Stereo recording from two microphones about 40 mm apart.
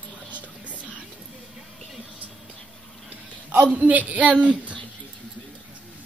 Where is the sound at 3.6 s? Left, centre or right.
Right.